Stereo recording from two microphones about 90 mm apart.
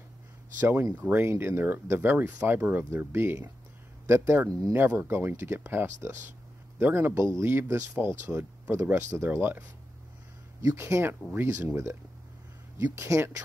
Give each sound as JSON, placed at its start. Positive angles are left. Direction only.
{"t": 0.6, "sound": "speech", "side_deg": -20}
{"t": 10.8, "sound": "speech", "side_deg": -25}